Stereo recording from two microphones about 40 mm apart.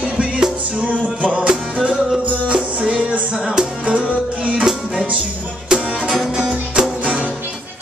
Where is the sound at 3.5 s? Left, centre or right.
Centre.